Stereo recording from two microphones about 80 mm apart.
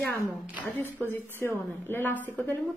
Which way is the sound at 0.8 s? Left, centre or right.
Left.